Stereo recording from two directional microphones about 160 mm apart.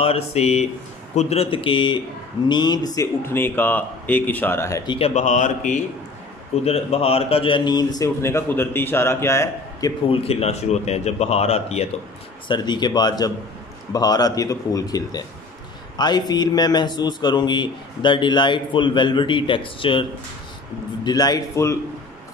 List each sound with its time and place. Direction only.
0.0 s a man's voice: 40° left (ahead or behind); by 4.9 s 20° left (ahead or behind)
4.9 s a man's voice: 40° left (ahead or behind); by 9.9 s 20° left (ahead or behind)
10.0 s speech: 35° left (ahead or behind)
12.4 s a man's voice: 25° left (ahead or behind)